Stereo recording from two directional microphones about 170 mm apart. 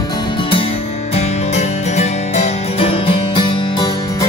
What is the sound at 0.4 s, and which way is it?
Music, 30° left (ahead or behind).